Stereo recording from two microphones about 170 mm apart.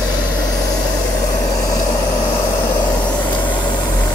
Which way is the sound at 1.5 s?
20° left (ahead or behind).